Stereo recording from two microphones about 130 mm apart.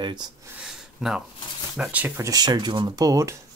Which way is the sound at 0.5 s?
5° right (ahead or behind).